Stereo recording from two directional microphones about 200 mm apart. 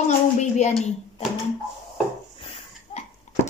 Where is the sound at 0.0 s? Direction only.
35° left (ahead or behind).